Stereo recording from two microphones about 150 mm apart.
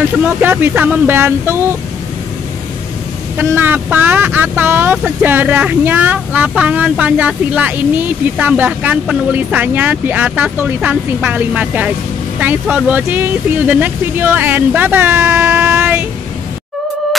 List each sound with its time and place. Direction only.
0.4 s speech: 10° right (ahead or behind)
3.3 s speech: 15° right (ahead or behind)